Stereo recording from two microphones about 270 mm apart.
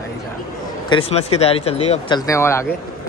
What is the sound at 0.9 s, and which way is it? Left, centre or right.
Speech, left.